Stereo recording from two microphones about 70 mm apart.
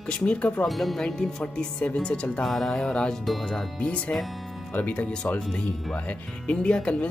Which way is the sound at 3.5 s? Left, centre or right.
Centre.